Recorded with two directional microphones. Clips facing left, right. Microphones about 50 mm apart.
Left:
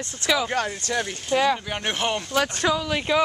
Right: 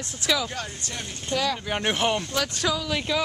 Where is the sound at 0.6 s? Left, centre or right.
Left.